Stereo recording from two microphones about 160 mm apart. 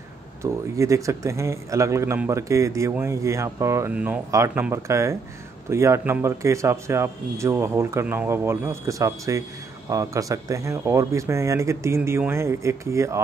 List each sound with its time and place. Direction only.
0.4 s a man's voice: 20° right (ahead or behind)